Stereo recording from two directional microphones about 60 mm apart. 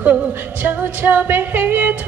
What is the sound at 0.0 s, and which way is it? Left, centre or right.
Music, right.